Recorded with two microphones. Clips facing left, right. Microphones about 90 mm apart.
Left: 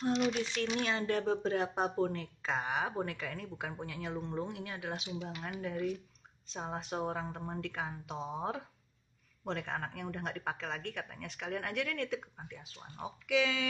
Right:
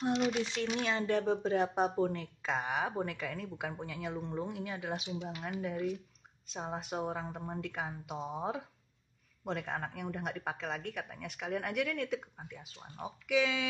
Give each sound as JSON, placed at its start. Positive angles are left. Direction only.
{"t": 0.0, "sound": "a woman's voice", "side_deg": -15}
{"t": 2.4, "sound": "a woman's voice", "side_deg": 0}